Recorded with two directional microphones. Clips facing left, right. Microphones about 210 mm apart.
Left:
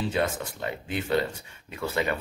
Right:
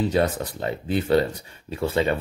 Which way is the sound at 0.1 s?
35° right (ahead or behind).